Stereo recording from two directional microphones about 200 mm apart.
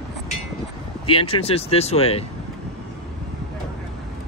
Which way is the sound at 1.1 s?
25° left (ahead or behind).